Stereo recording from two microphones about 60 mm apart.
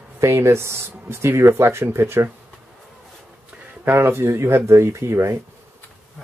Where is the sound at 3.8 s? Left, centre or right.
Right.